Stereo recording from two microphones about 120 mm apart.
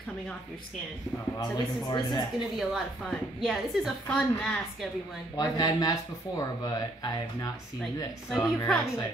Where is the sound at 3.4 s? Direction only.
Centre (ahead or behind).